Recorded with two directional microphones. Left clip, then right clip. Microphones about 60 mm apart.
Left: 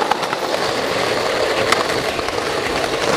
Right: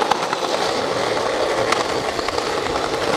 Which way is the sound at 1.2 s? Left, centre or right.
Left.